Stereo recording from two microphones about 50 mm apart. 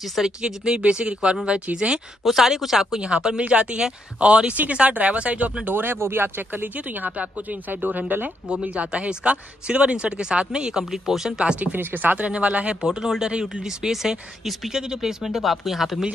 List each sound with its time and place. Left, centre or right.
0.0 s speech: centre
0.4 s speech: centre
2.2 s speech: centre; by 5.5 s right
5.7 s speech: right
8.6 s speech: right
11.6 s speech: right
12.2 s speech: right
12.8 s speech: centre
14.7 s speech: centre